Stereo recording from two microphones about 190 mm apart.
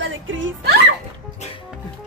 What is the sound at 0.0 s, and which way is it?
Music, 90° right.